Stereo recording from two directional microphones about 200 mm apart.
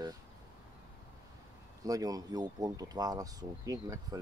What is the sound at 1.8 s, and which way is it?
Speech, 20° right (ahead or behind).